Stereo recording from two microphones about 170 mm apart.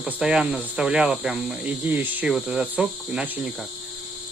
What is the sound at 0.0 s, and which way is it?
Speech, 5° right (ahead or behind).